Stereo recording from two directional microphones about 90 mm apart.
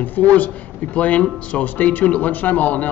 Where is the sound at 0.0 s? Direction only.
20° left (ahead or behind).